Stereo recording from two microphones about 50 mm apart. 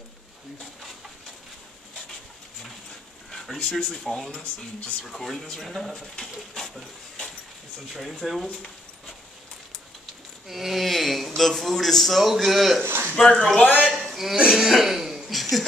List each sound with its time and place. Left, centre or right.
3.3 s speech: centre
6.5 s a sound: centre
7.9 s speech: centre
10.5 s speech: centre
12.8 s a man's voice: right
13.1 s speech: centre
14.1 s speech: centre
14.4 s speech: centre
14.7 s a sound: centre